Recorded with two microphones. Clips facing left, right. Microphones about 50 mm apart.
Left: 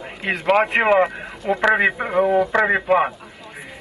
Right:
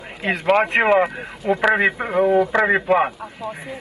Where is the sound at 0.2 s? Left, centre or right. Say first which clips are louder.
Even; centre.